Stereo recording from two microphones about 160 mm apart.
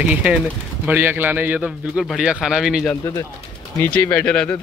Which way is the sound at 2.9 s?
20° left (ahead or behind).